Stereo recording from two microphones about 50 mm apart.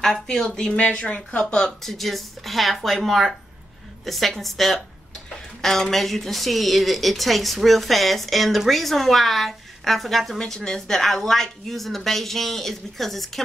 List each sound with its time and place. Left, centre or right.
0.0 s a woman's voice: centre; by 1.5 s left
1.5 s a woman's voice: centre